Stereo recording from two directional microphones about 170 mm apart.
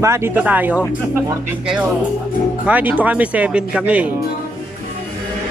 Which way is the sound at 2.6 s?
10° right (ahead or behind).